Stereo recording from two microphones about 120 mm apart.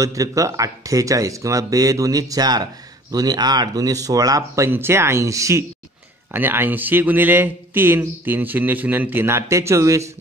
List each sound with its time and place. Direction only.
0.0 s speech: 30° right (ahead or behind)